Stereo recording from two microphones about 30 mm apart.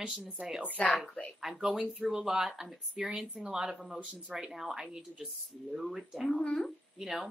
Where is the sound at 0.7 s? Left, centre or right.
Left.